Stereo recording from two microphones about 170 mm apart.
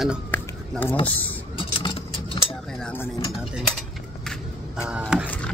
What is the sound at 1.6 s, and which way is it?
Vehicle, 30° left (ahead or behind).